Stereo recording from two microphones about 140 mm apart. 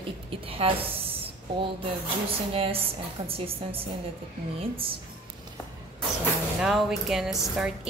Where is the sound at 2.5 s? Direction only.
40° right (ahead or behind).